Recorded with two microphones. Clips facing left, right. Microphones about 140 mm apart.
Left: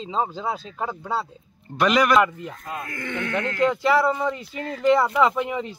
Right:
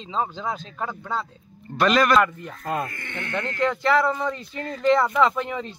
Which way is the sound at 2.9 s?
90° left.